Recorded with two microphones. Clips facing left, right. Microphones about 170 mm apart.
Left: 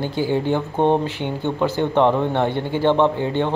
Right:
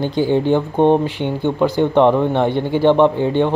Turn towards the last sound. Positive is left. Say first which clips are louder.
# right 5 dB
turn(degrees=-15)  # may be behind; listen again after turning